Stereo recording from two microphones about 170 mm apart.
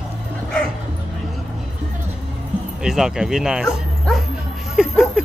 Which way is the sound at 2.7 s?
5° right (ahead or behind).